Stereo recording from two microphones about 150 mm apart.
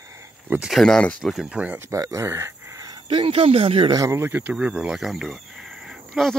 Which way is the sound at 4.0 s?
20° right (ahead or behind).